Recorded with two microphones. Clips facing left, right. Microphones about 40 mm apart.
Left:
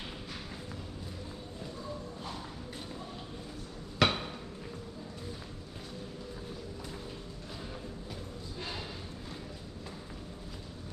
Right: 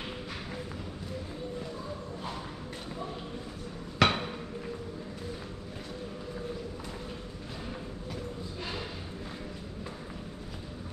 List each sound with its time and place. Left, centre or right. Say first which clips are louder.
4.0 s hammer: right 3 dB; centre